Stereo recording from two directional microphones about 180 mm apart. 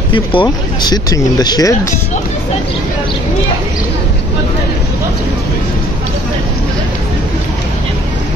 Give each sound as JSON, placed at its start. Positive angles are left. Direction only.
{"t": 0.1, "sound": "speech", "side_deg": 30}